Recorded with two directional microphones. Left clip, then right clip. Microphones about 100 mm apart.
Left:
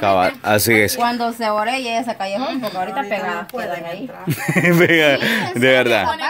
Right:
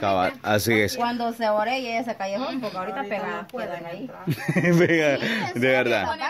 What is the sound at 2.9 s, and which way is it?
Speech, 15° right (ahead or behind).